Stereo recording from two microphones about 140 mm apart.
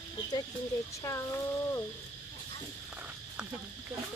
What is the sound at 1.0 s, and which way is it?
Speech, 20° left (ahead or behind).